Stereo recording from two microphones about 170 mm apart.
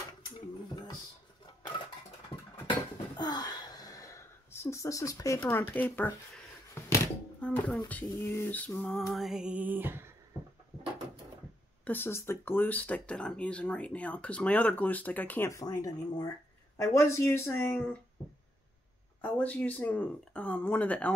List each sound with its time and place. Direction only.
3.2 s a sound: 25° left (ahead or behind); by 8.0 s 10° left (ahead or behind)
8.1 s music: 15° left (ahead or behind); by 10.1 s 15° right (ahead or behind)
11.8 s speech: 10° left (ahead or behind)
19.2 s speech: 10° left (ahead or behind)